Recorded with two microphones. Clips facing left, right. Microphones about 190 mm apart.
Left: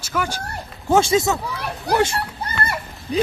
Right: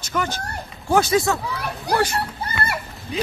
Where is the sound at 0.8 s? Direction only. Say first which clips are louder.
Left 1 dB; 25° left (ahead or behind).